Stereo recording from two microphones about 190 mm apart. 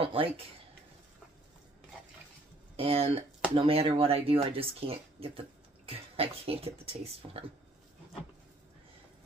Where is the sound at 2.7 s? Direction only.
30° right (ahead or behind).